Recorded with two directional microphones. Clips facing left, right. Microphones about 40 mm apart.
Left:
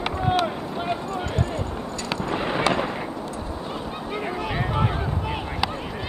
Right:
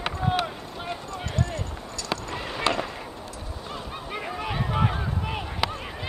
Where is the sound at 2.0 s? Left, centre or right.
Left.